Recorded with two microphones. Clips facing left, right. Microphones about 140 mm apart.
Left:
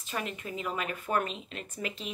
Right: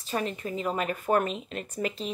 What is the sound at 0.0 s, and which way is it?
Speech, 35° right (ahead or behind).